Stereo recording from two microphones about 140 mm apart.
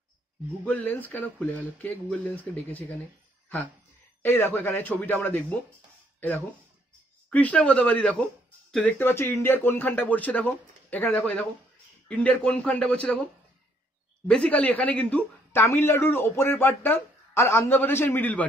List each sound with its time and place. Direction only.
0.7 s speech: 10° left (ahead or behind)
4.2 s speech: 15° left (ahead or behind)
7.2 s speech: 10° left (ahead or behind)